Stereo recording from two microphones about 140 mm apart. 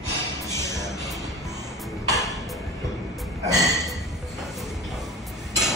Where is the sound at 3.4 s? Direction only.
25° right (ahead or behind).